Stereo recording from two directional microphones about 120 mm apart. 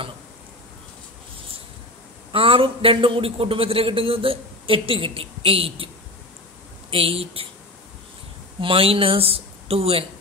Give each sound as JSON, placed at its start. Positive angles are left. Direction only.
{"t": 2.3, "sound": "a man's voice", "side_deg": -50}
{"t": 6.9, "sound": "a man's voice", "side_deg": -50}
{"t": 8.5, "sound": "a man's voice", "side_deg": -50}